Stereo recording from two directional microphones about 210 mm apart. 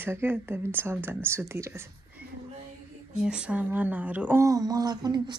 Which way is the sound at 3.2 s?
5° right (ahead or behind).